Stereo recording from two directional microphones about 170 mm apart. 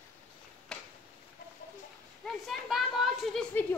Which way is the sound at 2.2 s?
Centre (ahead or behind).